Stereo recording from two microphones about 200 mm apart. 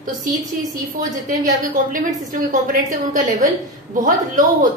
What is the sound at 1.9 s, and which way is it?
Speech, 40° right (ahead or behind).